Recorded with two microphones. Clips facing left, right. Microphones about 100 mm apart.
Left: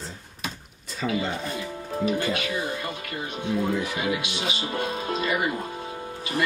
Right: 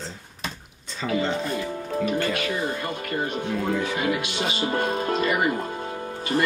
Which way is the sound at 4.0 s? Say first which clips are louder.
Right 2 dB; 45° right (ahead or behind).